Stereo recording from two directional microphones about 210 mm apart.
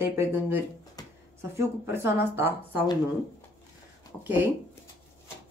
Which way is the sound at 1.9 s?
10° right (ahead or behind).